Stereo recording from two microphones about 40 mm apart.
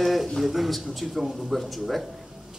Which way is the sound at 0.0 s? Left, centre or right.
Centre.